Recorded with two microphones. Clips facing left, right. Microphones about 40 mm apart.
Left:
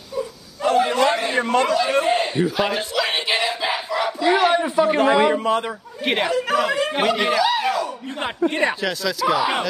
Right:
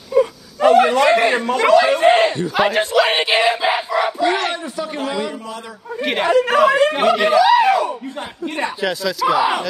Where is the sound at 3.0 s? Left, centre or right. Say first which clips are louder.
Right 7 dB; right.